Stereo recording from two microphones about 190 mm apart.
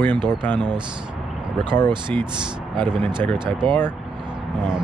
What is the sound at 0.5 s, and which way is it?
Speech, 25° right (ahead or behind).